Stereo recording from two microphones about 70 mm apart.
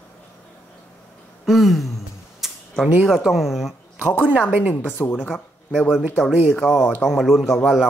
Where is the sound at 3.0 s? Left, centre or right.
Centre.